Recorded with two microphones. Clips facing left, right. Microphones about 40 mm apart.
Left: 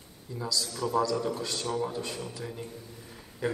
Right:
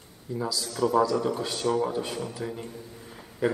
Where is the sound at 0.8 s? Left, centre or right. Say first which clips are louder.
Right 5 dB; right.